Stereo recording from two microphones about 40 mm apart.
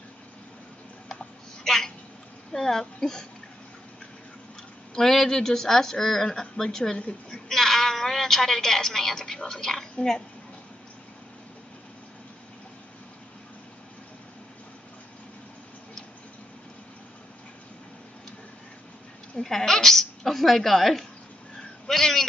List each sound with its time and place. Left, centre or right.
1.6 s a sound: centre
2.5 s a woman's voice: centre
4.9 s a woman's voice: centre
7.0 s a woman's voice: left
7.4 s a woman's voice: centre
19.3 s a woman's voice: centre